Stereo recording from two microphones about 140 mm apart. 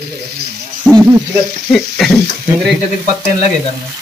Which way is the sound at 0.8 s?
15° right (ahead or behind).